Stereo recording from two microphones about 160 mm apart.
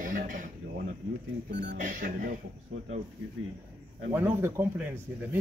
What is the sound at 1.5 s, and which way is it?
Speech, 90° right.